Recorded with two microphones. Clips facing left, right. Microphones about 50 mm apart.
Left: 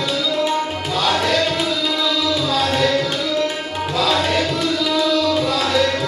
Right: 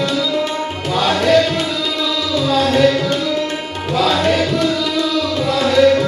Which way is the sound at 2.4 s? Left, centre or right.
Centre.